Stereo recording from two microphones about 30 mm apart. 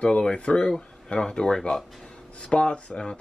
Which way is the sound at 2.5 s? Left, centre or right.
Left.